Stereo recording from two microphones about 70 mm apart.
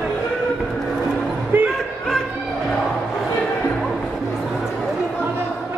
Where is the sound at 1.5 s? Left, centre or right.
Right.